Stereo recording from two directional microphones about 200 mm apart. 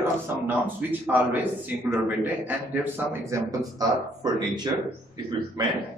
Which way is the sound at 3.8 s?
20° right (ahead or behind).